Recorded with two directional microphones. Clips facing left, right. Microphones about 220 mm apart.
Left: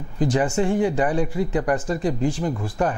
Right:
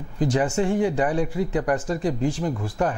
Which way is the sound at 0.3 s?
20° left (ahead or behind).